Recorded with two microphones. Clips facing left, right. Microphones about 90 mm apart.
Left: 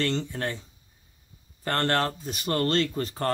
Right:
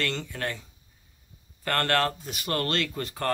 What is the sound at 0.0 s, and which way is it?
Speech, 25° left (ahead or behind).